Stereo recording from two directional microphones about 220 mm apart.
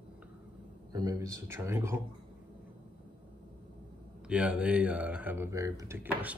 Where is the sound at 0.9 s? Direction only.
15° right (ahead or behind).